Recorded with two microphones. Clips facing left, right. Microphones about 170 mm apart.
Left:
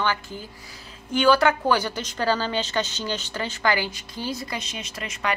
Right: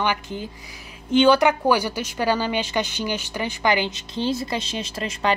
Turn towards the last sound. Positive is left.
turn(degrees=-30)  # may be behind; listen again after turning